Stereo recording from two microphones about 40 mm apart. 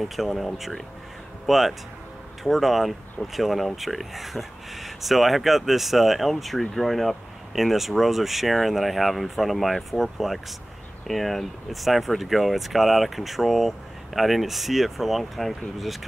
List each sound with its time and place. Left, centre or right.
0.0 s speech: centre